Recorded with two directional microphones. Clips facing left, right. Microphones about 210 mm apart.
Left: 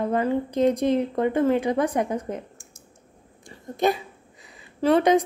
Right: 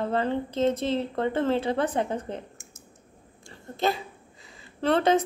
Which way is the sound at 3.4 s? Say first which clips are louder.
Left 4 dB; 20° left (ahead or behind).